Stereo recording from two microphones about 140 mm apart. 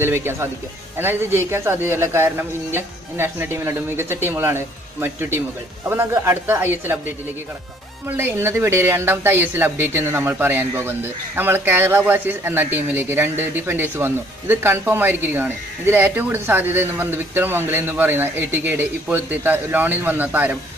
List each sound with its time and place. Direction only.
0.0 s speech: 15° right (ahead or behind)
8.2 s speech: 15° right (ahead or behind)